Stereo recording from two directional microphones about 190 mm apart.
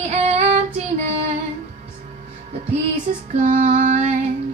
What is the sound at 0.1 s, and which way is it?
Child singing, 35° right (ahead or behind).